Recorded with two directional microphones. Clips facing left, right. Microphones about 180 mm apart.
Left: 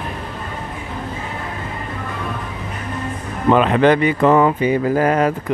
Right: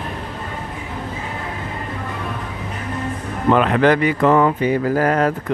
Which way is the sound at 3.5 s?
20° left (ahead or behind).